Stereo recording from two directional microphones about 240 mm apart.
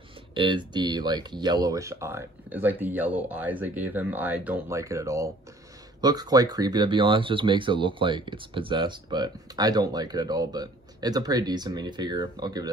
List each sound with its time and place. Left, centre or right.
0.3 s speech: right